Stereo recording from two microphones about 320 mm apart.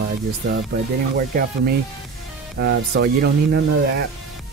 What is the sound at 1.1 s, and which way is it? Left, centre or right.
Speech, right.